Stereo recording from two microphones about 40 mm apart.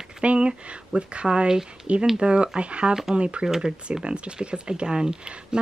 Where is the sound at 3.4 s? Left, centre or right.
Centre.